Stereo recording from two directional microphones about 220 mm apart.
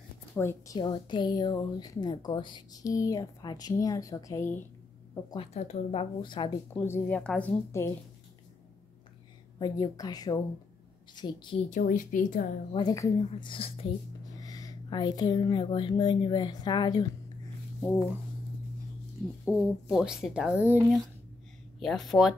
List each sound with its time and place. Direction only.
0.4 s a woman's voice: 15° left (ahead or behind)
5.3 s speech: 25° left (ahead or behind)
6.7 s a woman's voice: 10° left (ahead or behind)
9.6 s a woman's voice: 15° left (ahead or behind)
11.7 s speech: 35° left (ahead or behind)
12.7 s speech: 15° left (ahead or behind)
19.4 s speech: 5° right (ahead or behind)